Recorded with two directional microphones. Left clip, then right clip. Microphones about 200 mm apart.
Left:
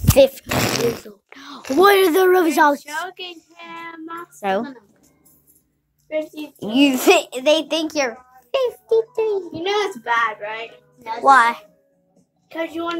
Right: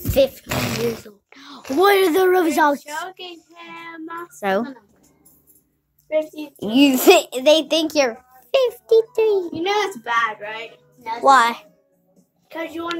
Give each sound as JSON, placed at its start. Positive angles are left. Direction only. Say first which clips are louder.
{"t": 0.2, "sound": "speech", "louder": "left 4 dB", "side_deg": 25}
{"t": 0.6, "sound": "a sound", "louder": "left 3 dB", "side_deg": 55}
{"t": 1.0, "sound": "whispering", "louder": "left 3 dB", "side_deg": 15}
{"t": 1.8, "sound": "speech", "louder": "left 2 dB", "side_deg": 10}
{"t": 2.8, "sound": "a woman's voice", "louder": "left 2 dB", "side_deg": 40}
{"t": 3.5, "sound": "child singing", "louder": "left 1 dB", "side_deg": 30}
{"t": 4.4, "sound": "a child's voice", "louder": "right 1 dB", "side_deg": -10}
{"t": 6.0, "sound": "a child's voice", "louder": "right 3 dB", "side_deg": 30}
{"t": 6.7, "sound": "a child's voice", "louder": "right 1 dB", "side_deg": -10}
{"t": 9.5, "sound": "a child's voice", "louder": "even", "side_deg": -15}
{"t": 12.4, "sound": "a woman's voice", "louder": "left 3 dB", "side_deg": 25}